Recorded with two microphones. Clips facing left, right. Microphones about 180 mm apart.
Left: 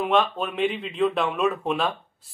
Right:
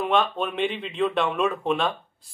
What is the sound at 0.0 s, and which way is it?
Speech, centre (ahead or behind).